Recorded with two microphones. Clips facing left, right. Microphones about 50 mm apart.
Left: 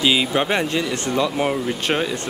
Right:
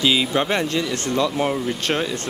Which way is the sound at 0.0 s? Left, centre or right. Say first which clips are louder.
Left 1 dB; centre.